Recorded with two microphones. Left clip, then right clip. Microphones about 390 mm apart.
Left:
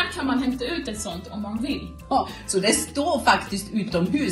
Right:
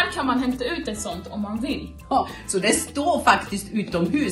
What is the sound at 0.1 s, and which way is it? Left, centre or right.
A woman's voice, centre.